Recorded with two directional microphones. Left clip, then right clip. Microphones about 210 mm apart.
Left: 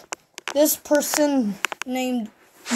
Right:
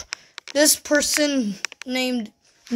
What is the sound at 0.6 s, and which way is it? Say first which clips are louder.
Speech: right 1 dB; 20° right (ahead or behind).